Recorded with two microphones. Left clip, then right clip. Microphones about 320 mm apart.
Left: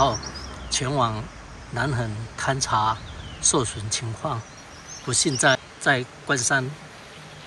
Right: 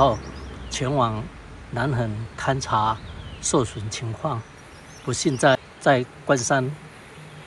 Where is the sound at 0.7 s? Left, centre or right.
Centre.